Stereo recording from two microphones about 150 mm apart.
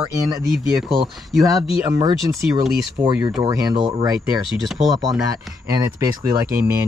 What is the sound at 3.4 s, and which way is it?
Speech, 25° right (ahead or behind).